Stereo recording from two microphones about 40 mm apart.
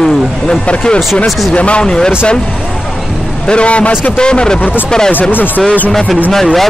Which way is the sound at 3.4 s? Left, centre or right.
Left.